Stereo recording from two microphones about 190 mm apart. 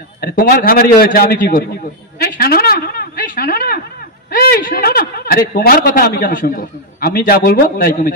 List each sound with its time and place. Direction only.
0.2 s a man's voice: 55° left (ahead or behind)
2.1 s a sound: 55° left (ahead or behind)
4.3 s a man's voice: 50° left (ahead or behind)